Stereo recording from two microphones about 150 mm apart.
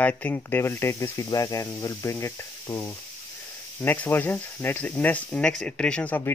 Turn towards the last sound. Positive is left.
turn(degrees=10)  # may be behind; listen again after turning